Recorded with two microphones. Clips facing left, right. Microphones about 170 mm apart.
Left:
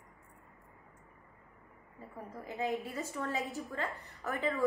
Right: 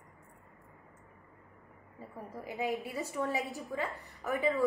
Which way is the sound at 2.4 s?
15° right (ahead or behind).